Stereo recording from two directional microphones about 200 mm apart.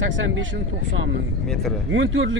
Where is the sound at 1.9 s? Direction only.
70° right (ahead or behind).